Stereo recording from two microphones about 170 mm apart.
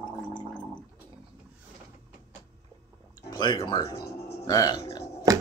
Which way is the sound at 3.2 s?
25° left (ahead or behind).